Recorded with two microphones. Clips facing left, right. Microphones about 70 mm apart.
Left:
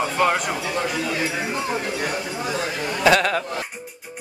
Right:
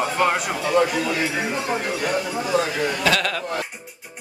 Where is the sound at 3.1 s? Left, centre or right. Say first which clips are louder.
Left 6 dB; left.